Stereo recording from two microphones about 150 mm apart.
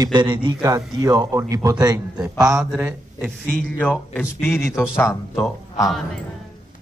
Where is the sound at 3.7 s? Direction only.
10° left (ahead or behind).